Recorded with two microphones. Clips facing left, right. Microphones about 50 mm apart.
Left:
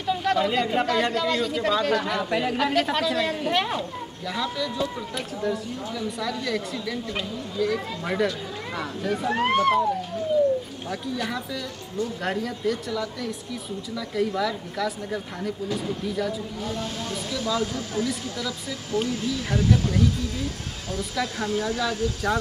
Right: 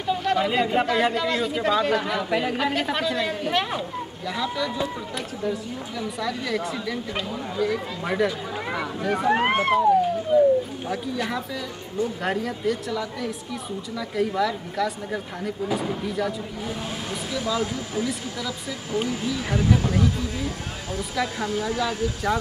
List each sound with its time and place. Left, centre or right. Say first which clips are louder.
0.0 s speech: even; centre
9.3 s speech: even; right
10.3 s a sound: right 3 dB; right
10.9 s speech: left 2 dB; centre